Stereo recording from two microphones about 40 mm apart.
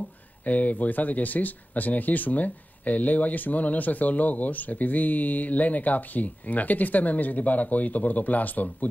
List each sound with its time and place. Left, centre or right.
0.5 s speech: left